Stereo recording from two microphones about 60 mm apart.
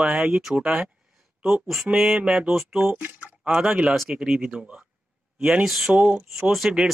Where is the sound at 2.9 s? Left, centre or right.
Right.